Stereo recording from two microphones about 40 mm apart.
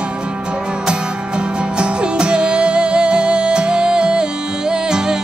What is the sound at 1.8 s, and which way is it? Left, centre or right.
Music, right.